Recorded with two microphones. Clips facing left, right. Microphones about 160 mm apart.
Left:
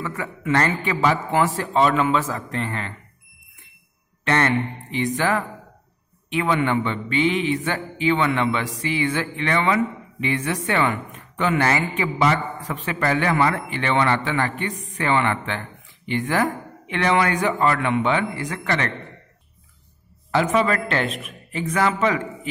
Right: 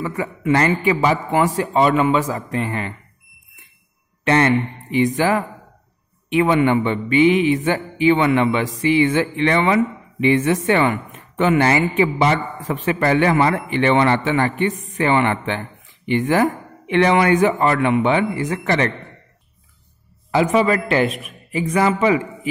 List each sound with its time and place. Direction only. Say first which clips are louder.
0.0 s a man's voice: right 5 dB; 15° right (ahead or behind)
4.2 s a man's voice: right 4 dB; 15° right (ahead or behind)
20.2 s a man's voice: right 3 dB; 10° right (ahead or behind)